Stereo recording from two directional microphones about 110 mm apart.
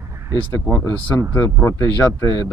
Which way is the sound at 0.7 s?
15° left (ahead or behind).